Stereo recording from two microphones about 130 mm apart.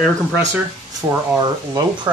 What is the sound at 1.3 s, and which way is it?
Speech, 35° right (ahead or behind).